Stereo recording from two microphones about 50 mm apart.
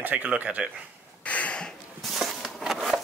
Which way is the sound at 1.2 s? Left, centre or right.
Left.